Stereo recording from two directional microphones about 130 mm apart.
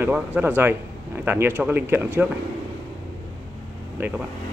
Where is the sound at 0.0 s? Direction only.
15° right (ahead or behind).